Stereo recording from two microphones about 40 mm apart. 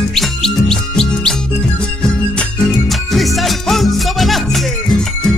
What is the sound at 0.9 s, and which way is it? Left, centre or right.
Music, centre.